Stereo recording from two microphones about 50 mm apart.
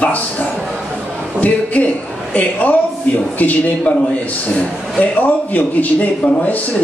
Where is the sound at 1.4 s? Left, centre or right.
Left.